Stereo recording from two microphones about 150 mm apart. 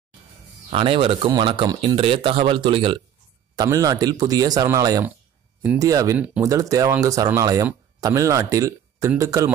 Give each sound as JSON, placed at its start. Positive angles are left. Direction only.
{"t": 0.7, "sound": "speech", "side_deg": -35}
{"t": 6.1, "sound": "speech", "side_deg": -10}
{"t": 6.4, "sound": "speech", "side_deg": -20}